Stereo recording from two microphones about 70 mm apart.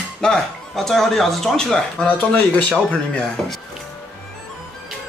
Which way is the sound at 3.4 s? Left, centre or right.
Centre.